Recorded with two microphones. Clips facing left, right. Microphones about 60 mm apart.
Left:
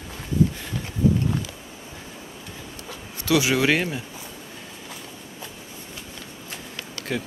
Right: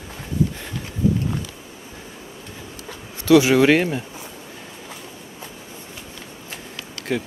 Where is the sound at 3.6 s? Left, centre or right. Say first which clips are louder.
Right 6 dB; right.